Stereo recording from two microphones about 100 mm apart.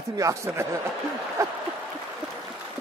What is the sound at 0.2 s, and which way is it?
Speech, 30° right (ahead or behind).